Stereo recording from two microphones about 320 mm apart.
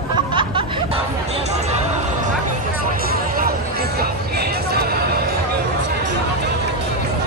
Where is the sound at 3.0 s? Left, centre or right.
Right.